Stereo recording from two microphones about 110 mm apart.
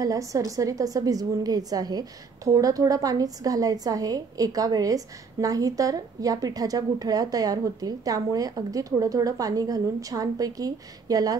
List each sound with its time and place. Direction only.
0.0 s a woman's voice: 30° right (ahead or behind)